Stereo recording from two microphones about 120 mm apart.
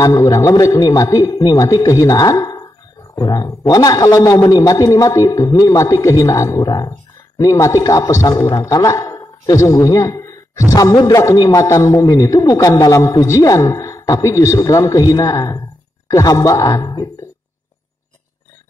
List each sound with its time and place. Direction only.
0.0 s a man's voice: 25° left (ahead or behind)